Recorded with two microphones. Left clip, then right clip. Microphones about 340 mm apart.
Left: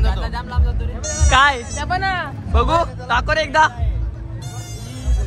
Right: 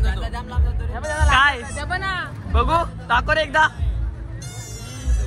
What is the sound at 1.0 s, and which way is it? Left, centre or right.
Speech, centre.